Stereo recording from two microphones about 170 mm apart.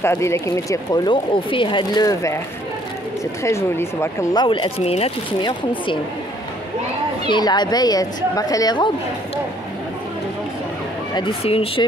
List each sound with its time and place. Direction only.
0.0 s speech: 15° left (ahead or behind)
3.4 s speech: 15° left (ahead or behind); by 5.6 s 30° left (ahead or behind)
7.2 s speech: 25° left (ahead or behind)
11.1 s speech: 35° left (ahead or behind)